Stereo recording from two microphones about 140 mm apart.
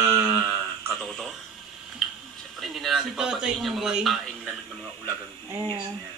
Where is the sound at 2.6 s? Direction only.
Centre (ahead or behind).